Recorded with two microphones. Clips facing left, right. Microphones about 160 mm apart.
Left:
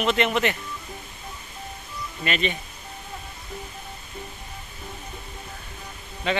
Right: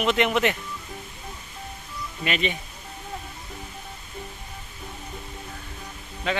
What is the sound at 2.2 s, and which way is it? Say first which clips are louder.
Speech: even; 10° right (ahead or behind).